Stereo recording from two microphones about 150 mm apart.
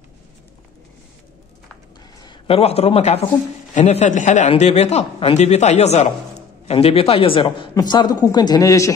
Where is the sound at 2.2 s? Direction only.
40° left (ahead or behind).